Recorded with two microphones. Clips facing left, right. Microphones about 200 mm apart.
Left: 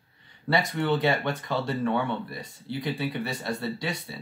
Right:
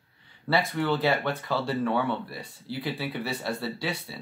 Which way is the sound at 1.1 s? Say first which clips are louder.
Even; 15° left (ahead or behind).